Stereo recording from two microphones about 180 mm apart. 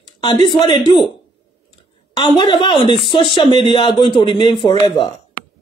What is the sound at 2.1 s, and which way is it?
Speech, 25° left (ahead or behind).